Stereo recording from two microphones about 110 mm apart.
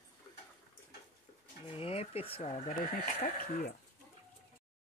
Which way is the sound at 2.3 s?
70° left (ahead or behind).